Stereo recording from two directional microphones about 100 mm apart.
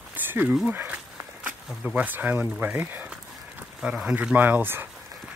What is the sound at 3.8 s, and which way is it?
Speech, 10° right (ahead or behind).